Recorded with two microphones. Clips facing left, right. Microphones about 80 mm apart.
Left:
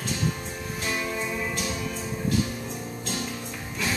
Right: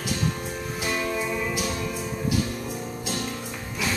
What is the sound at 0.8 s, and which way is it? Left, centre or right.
Music, centre.